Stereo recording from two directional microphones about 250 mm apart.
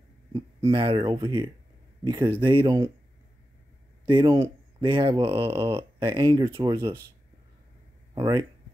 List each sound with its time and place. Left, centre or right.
0.7 s speech: centre
4.1 s speech: centre
8.1 s speech: centre